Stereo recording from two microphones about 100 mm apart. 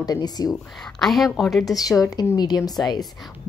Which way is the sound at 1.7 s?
35° left (ahead or behind).